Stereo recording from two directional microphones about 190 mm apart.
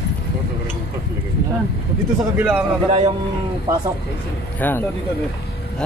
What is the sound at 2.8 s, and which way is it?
Speech, 35° right (ahead or behind).